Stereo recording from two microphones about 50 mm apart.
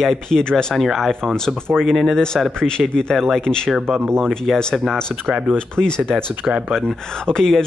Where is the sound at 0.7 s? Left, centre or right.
Centre.